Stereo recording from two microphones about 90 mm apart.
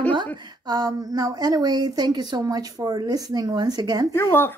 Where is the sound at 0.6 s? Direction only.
45° right (ahead or behind).